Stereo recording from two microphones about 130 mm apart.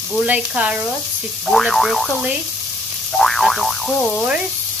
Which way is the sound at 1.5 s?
Centre (ahead or behind).